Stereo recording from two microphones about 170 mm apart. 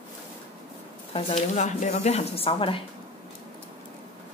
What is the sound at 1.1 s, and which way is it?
A woman's voice, 35° left (ahead or behind).